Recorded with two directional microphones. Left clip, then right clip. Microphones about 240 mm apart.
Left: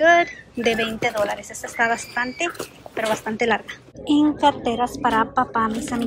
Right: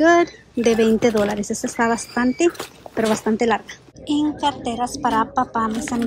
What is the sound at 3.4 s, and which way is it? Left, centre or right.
Speech, centre.